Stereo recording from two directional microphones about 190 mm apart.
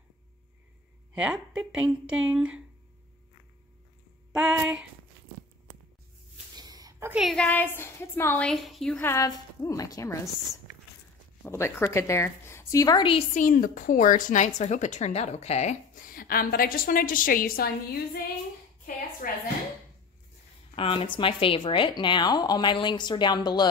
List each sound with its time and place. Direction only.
1.1 s a woman's voice: 5° right (ahead or behind)
4.3 s a woman's voice: 5° right (ahead or behind)
6.5 s a woman's voice: 20° right (ahead or behind); by 9.1 s 5° left (ahead or behind)
9.1 s a woman's voice: 15° left (ahead or behind)
13.3 s a woman's voice: 45° left (ahead or behind)
19.2 s a woman's voice: 45° left (ahead or behind)
20.7 s a woman's voice: 30° left (ahead or behind)